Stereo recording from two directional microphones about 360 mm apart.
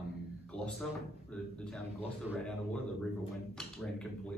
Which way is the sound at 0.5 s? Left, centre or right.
Centre.